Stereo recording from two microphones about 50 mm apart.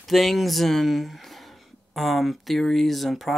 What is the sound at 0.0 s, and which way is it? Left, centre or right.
Speech, centre.